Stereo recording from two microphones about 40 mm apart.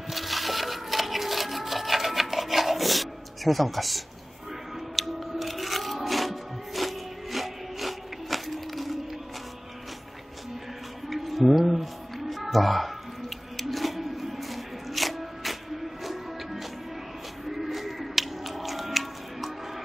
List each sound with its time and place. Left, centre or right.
0.1 s wood: centre
4.9 s music: centre
11.1 s music: centre
13.6 s a sound: centre
16.0 s music: centre